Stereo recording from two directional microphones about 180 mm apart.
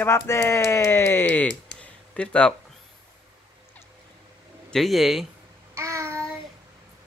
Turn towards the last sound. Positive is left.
turn(degrees=-15)  # may be behind; listen again after turning